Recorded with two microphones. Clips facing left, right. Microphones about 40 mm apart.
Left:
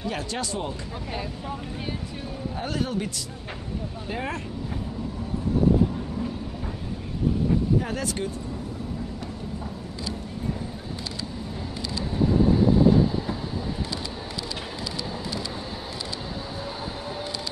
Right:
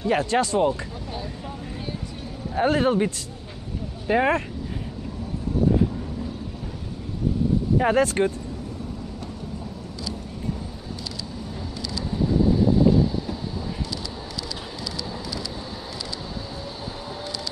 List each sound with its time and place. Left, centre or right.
0.0 s speech: right
2.5 s speech: right
4.1 s speech: right
7.8 s speech: right
11.9 s vehicle: left